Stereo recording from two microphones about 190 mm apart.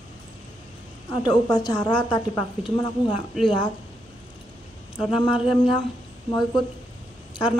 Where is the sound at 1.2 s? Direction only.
20° left (ahead or behind).